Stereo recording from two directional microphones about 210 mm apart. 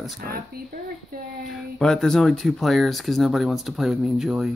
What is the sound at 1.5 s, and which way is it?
Speech, centre (ahead or behind).